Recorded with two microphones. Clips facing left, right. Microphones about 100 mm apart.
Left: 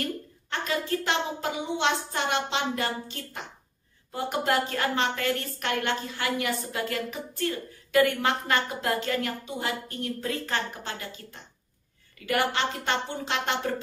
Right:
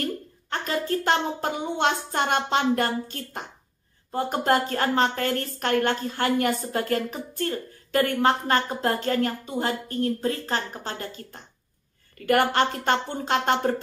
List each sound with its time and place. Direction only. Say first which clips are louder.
0.5 s a woman's voice: right 2 dB; 40° right (ahead or behind)